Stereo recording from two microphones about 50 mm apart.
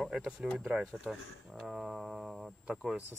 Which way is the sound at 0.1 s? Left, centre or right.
Centre.